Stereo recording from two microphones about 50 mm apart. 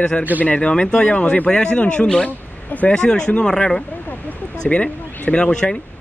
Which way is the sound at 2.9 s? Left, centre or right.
Centre.